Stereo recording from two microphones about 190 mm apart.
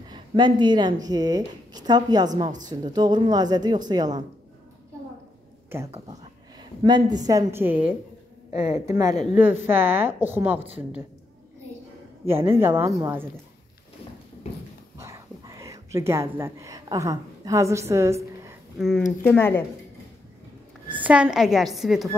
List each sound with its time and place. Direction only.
0.1 s a woman's voice: 25° right (ahead or behind)
6.6 s a woman's voice: 25° right (ahead or behind)
8.5 s a woman's voice: 35° left (ahead or behind)
8.8 s speech: 15° right (ahead or behind)
9.1 s speech: 40° left (ahead or behind)
9.4 s speech: 10° right (ahead or behind)
12.3 s speech: 15° right (ahead or behind)
15.0 s a sound: 15° right (ahead or behind)
18.8 s a woman's voice: centre (ahead or behind)
20.9 s a woman's voice: 5° right (ahead or behind)